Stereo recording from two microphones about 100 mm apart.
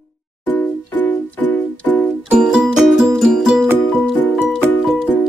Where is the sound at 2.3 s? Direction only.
5° right (ahead or behind).